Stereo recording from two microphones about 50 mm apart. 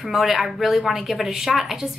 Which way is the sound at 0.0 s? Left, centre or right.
Centre.